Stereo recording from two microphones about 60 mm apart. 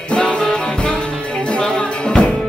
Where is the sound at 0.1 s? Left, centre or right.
Centre.